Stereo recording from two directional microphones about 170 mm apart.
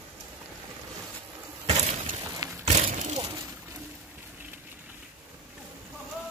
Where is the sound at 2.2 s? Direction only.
20° right (ahead or behind).